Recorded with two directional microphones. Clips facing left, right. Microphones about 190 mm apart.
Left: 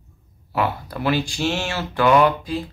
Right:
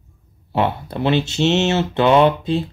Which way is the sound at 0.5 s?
25° right (ahead or behind).